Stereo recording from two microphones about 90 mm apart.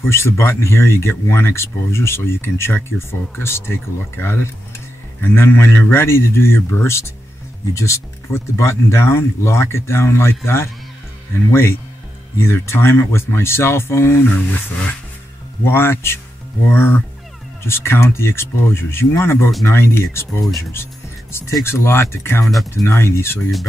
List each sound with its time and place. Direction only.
0.0 s speech: 30° left (ahead or behind)
12.4 s speech: 30° left (ahead or behind)
15.6 s speech: 25° left (ahead or behind)
20.7 s music: 30° left (ahead or behind)
21.6 s speech: 30° left (ahead or behind)
22.5 s speech: centre (ahead or behind)
22.8 s speech: 30° left (ahead or behind)